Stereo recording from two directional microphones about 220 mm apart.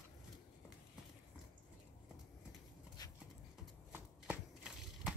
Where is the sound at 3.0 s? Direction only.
15° left (ahead or behind).